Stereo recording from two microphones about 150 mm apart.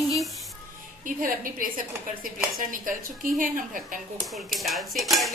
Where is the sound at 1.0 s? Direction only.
65° right (ahead or behind).